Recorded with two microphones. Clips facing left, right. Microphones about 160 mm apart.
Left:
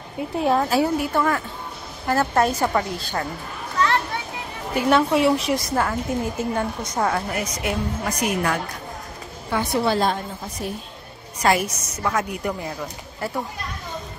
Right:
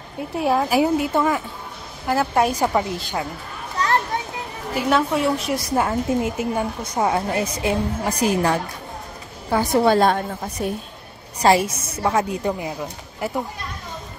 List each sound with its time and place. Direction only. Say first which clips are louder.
0.4 s a woman's voice: even; 5° right (ahead or behind)
0.7 s a woman's voice: right 2 dB; 20° right (ahead or behind)
3.8 s children playing: left 1 dB; 35° right (ahead or behind)
4.7 s a woman's voice: left 2 dB; centre (ahead or behind)
5.8 s a woman's voice: right 3 dB; 20° right (ahead or behind)
7.3 s a woman's voice: right 4 dB; 30° right (ahead or behind)
9.9 s a woman's voice: right 5 dB; 60° right (ahead or behind)
11.4 s a woman's voice: right 4 dB; 30° right (ahead or behind)